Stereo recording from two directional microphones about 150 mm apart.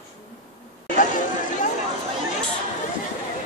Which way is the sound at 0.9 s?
60° left (ahead or behind).